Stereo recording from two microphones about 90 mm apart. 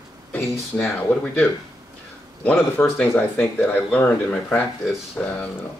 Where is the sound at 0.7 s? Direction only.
5° left (ahead or behind).